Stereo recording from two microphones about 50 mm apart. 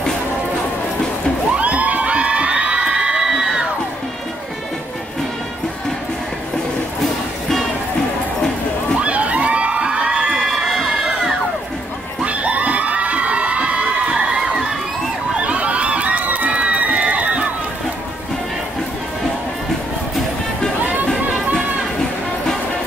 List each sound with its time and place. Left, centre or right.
1.6 s crowd: right
9.0 s crowd: right; by 11.3 s centre
12.2 s children shouting: right
15.3 s crowd: right
20.8 s music: right